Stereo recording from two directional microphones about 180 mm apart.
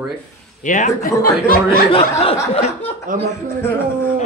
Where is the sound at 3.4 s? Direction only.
15° left (ahead or behind).